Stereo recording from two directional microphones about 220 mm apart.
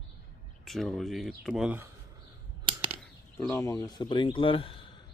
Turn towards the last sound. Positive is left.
turn(degrees=25)  # may be behind; listen again after turning